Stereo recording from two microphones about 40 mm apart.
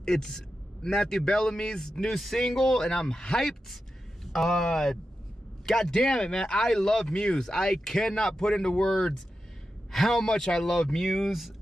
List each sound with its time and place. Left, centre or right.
0.0 s speech: centre
9.9 s speech: centre
10.2 s speech: centre
11.1 s speech: centre